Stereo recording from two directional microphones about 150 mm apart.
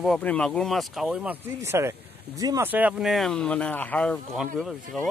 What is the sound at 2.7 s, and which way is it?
Speech, 10° right (ahead or behind).